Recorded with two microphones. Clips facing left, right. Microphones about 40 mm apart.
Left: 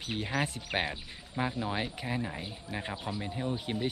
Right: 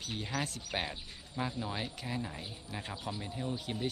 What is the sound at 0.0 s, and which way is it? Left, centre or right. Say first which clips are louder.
Speech: left 5 dB; left.